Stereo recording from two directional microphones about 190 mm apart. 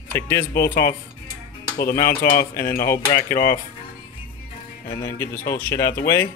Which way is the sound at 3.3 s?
15° left (ahead or behind).